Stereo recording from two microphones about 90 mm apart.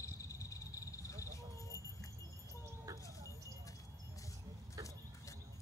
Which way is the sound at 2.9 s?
40° right (ahead or behind).